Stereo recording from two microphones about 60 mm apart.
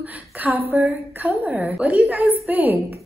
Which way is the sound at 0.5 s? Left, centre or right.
Centre.